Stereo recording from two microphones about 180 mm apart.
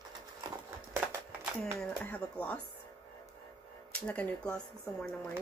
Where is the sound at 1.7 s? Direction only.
5° left (ahead or behind).